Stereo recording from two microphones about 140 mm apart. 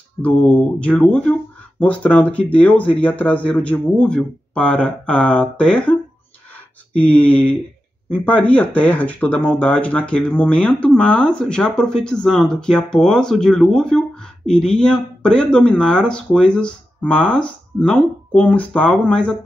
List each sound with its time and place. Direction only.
0.2 s speech: 10° left (ahead or behind)
6.5 s a sound: 10° left (ahead or behind)
8.1 s speech: 10° left (ahead or behind)